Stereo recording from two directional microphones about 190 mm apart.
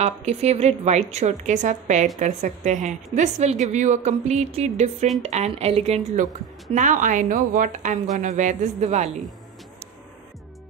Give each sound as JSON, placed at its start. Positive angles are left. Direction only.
{"t": 0.0, "sound": "a woman's voice", "side_deg": -35}